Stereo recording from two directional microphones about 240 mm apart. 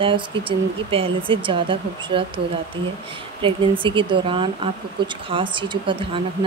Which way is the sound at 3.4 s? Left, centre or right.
Right.